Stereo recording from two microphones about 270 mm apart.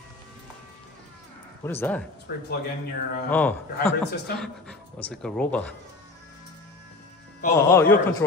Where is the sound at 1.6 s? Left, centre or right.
Centre.